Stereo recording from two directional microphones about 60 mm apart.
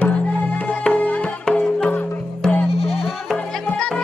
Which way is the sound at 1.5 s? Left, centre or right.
Centre.